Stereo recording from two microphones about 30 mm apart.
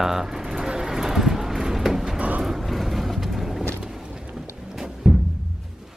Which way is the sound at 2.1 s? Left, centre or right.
Right.